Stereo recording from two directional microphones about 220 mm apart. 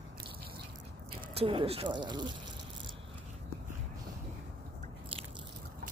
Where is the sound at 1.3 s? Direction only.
25° right (ahead or behind).